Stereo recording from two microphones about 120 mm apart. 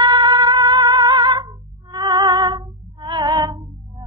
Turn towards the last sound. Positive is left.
turn(degrees=-35)  # may be behind; listen again after turning